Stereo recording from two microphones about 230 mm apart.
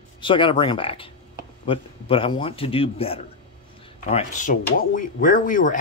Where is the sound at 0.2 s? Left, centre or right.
Left.